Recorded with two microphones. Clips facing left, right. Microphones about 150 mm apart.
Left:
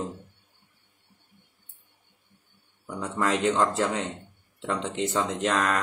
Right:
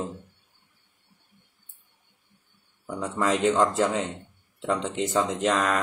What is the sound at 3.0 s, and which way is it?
Speech, centre (ahead or behind).